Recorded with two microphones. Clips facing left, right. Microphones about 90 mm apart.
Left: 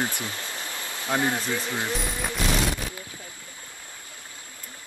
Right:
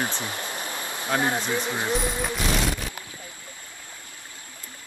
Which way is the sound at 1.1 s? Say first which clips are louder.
Right 1 dB; 25° right (ahead or behind).